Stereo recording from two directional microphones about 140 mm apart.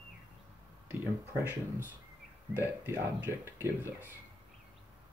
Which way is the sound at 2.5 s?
15° right (ahead or behind).